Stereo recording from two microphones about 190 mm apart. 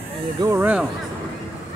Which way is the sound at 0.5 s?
10° right (ahead or behind).